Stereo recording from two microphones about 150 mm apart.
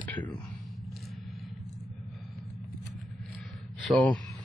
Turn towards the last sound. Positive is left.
turn(degrees=5)  # may be behind; listen again after turning